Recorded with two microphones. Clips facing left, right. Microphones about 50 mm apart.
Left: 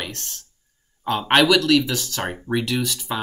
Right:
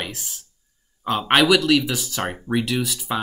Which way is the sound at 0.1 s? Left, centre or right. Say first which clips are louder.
Even; centre.